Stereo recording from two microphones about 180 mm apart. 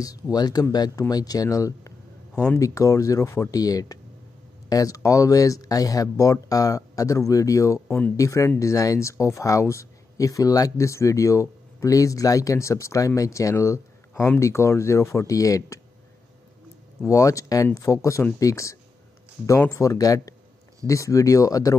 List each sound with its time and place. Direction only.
0.0 s speech: 20° left (ahead or behind)
2.3 s speech: 5° left (ahead or behind)
2.6 s speech: 20° left (ahead or behind)
17.0 s speech: 15° left (ahead or behind)